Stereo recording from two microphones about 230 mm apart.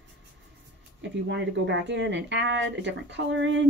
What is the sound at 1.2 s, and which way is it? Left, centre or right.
Speech, right.